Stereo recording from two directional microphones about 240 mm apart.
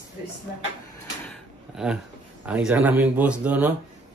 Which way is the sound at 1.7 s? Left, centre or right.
Centre.